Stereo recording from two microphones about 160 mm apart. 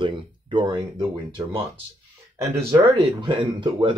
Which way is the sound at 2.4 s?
20° right (ahead or behind).